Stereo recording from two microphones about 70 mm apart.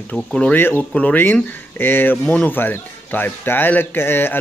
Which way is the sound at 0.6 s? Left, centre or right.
Left.